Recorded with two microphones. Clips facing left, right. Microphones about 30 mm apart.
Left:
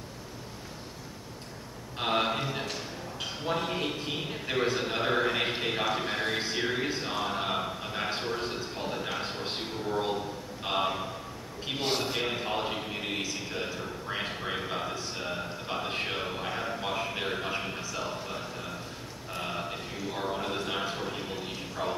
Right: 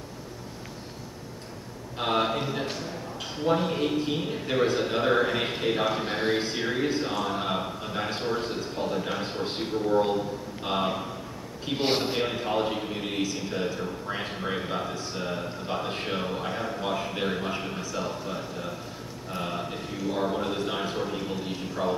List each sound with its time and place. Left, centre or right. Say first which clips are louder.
2.0 s a sound: right 2 dB; centre
3.2 s a man's voice: right 6 dB; centre
6.0 s a man's voice: right 4 dB; centre
6.4 s a man's voice: right 2 dB; centre
11.8 s a man's voice: right 5 dB; right
12.3 s a man's voice: right 4 dB; centre
19.3 s a sound: right 2 dB; centre